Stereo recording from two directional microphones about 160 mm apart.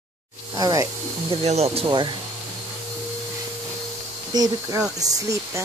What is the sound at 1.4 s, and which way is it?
Speech, 40° right (ahead or behind).